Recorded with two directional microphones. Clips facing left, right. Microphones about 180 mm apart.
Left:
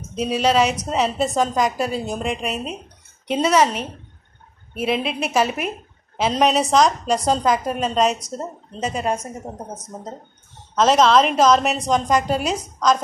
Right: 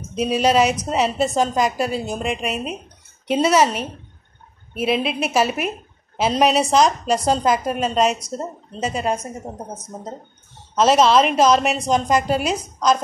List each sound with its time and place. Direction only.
0.1 s a woman's voice: 10° right (ahead or behind)
4.8 s a woman's voice: 10° right (ahead or behind)
6.1 s a woman's voice: 5° right (ahead or behind)